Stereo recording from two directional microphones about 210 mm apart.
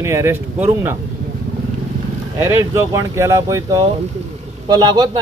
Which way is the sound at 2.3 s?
15° right (ahead or behind).